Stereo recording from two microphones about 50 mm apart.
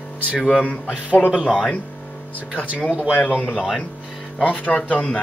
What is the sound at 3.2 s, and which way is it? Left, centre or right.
Speech, left.